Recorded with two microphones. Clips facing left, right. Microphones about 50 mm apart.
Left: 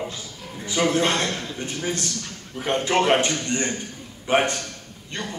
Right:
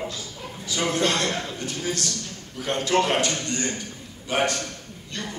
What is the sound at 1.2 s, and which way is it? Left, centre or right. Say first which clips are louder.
Speech: right 1 dB; right.